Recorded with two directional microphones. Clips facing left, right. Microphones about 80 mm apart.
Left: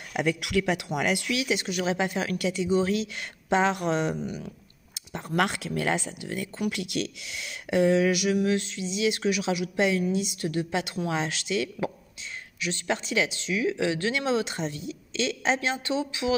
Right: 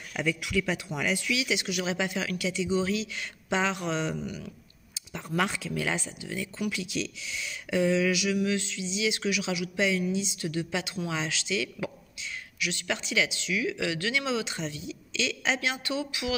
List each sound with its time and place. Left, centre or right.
0.1 s speech: left
12.5 s speech: left